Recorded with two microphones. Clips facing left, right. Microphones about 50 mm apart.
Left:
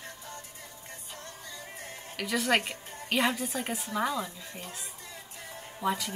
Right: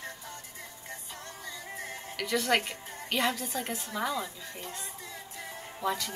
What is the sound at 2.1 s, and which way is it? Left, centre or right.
A woman's voice, centre.